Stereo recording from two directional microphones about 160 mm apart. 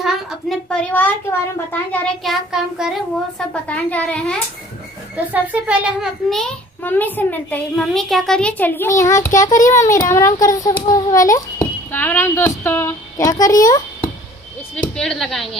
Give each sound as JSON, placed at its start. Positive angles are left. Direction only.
{"t": 0.0, "sound": "a sound", "side_deg": 0}
{"t": 1.7, "sound": "a child's voice", "side_deg": 5}
{"t": 2.5, "sound": "child singing", "side_deg": -5}
{"t": 3.6, "sound": "a child's voice", "side_deg": 10}
{"t": 5.1, "sound": "speech", "side_deg": -10}
{"t": 6.3, "sound": "a child's voice", "side_deg": 10}
{"t": 15.0, "sound": "child singing", "side_deg": 0}